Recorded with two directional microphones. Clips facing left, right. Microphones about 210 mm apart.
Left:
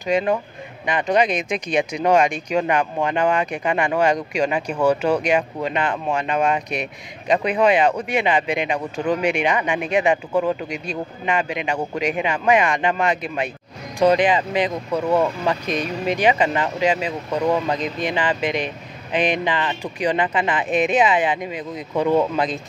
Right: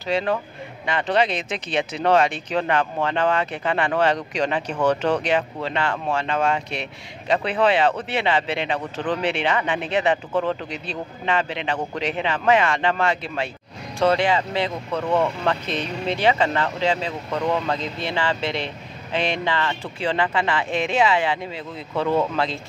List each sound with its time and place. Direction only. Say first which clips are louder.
0.0 s speech: left 3 dB; 15° left (ahead or behind)